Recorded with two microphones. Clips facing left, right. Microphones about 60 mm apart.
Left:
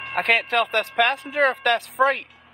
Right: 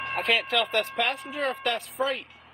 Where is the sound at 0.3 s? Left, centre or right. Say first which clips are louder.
Left 5 dB; left.